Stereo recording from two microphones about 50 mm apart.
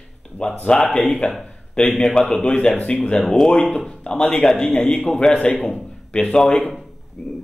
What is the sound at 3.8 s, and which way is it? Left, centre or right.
A man's voice, centre.